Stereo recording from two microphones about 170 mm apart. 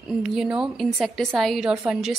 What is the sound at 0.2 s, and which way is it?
Speech, 5° right (ahead or behind).